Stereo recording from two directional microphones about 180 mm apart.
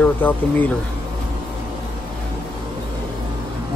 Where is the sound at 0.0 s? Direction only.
10° left (ahead or behind).